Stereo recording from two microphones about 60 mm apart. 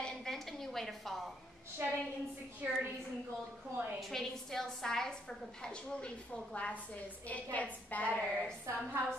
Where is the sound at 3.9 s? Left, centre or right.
Centre; by 8.2 s left.